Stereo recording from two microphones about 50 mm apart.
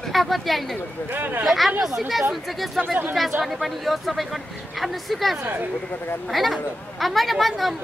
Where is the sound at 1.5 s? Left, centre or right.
Centre.